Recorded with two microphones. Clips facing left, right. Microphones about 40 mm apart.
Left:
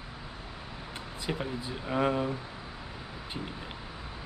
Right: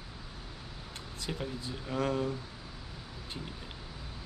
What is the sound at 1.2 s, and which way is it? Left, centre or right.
Speech, centre.